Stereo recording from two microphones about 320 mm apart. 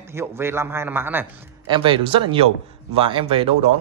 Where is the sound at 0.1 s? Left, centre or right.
Centre.